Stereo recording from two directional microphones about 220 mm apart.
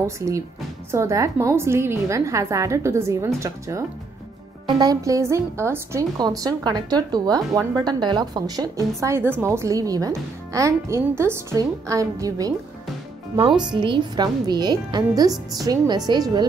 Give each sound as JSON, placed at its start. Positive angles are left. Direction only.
{"t": 0.0, "sound": "speech", "side_deg": -15}
{"t": 13.6, "sound": "a woman's voice", "side_deg": -20}